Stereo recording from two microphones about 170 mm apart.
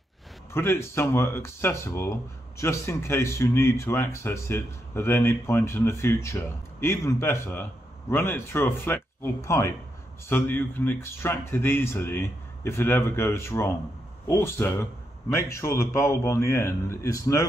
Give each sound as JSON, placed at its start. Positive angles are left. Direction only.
{"t": 0.5, "sound": "speech", "side_deg": 15}